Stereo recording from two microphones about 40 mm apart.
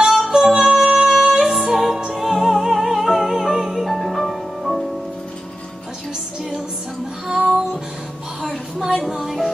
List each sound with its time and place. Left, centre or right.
0.3 s music: centre
1.4 s music: centre
7.2 s music: centre
8.5 s a sound: centre
9.0 s music: centre